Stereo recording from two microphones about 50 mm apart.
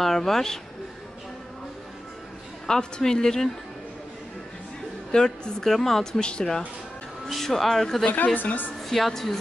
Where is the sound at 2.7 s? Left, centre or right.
Centre.